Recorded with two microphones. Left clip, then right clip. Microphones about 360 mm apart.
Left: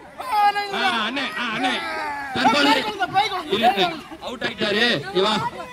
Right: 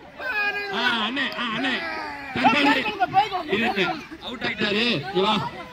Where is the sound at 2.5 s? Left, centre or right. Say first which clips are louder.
Left 3 dB; left.